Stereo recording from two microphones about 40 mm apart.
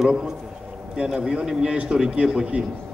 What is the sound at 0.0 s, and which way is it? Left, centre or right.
A man's voice, centre.